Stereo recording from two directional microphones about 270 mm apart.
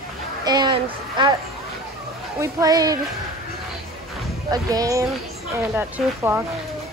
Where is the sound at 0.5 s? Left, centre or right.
Centre.